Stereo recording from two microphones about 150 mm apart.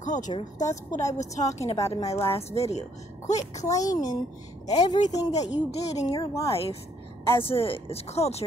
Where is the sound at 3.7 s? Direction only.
25° left (ahead or behind).